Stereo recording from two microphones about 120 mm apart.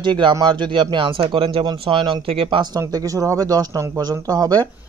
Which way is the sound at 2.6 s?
35° right (ahead or behind).